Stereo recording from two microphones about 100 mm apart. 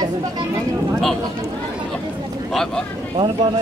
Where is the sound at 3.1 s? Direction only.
55° right (ahead or behind).